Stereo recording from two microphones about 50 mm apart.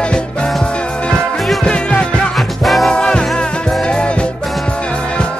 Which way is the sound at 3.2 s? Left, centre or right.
Centre.